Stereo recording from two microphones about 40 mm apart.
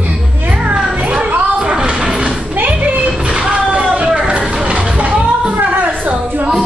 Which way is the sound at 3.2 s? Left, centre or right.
Right.